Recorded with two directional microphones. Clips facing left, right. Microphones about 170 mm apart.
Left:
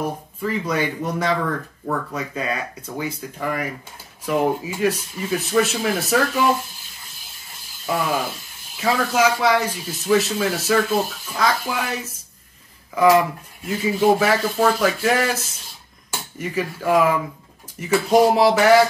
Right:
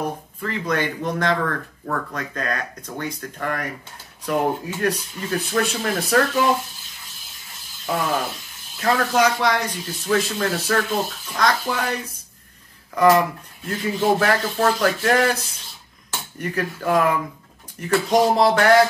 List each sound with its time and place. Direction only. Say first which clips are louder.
0.4 s a man's voice: left 1 dB; 5° left (ahead or behind)
7.8 s a man's voice: left 1 dB; 10° left (ahead or behind)